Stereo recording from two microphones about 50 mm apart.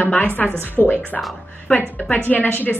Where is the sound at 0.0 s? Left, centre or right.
Left.